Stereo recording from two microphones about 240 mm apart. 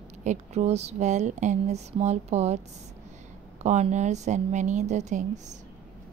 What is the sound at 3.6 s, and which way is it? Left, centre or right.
Speech, right.